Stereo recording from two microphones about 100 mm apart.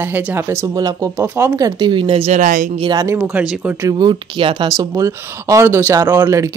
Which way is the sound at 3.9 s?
50° right (ahead or behind).